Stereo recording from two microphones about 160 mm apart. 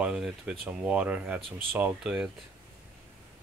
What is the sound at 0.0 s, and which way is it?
Speech, 5° right (ahead or behind).